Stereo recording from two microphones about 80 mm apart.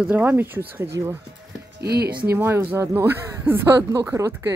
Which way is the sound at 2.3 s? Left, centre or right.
Right.